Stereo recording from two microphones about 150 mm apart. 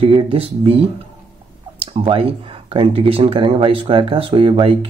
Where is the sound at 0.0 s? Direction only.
35° right (ahead or behind).